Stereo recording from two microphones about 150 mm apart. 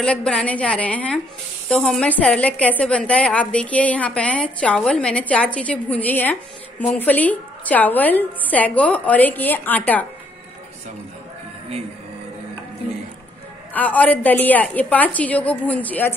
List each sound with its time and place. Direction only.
0.0 s a woman's voice: 5° left (ahead or behind)
13.7 s a woman's voice: 10° left (ahead or behind)